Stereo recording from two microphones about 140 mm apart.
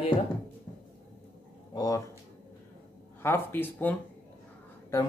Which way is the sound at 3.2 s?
15° left (ahead or behind).